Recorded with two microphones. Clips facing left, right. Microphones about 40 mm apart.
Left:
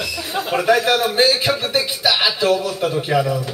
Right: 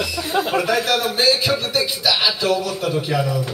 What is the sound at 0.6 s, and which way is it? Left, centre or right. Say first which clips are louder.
A man's voice: left 3 dB; left.